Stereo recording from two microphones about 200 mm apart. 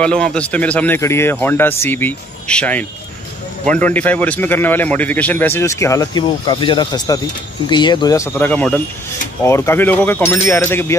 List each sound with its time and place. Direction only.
0.0 s a man's voice: 5° left (ahead or behind)